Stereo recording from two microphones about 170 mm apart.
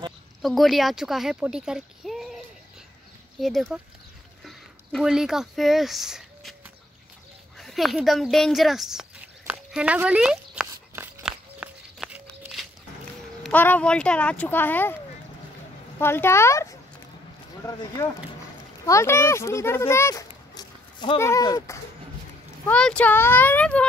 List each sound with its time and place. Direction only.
0.4 s speech: centre (ahead or behind)
7.5 s speech: centre (ahead or behind)
9.5 s a sound: 5° right (ahead or behind)
13.4 s speech: 10° left (ahead or behind)
16.0 s speech: 15° left (ahead or behind)
17.6 s speech: 20° left (ahead or behind)
22.7 s speech: 5° left (ahead or behind)